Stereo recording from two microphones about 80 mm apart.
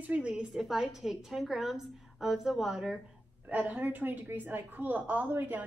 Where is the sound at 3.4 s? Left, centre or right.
Right.